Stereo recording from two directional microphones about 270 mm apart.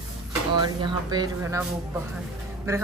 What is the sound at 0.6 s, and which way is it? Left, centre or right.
Speech, centre.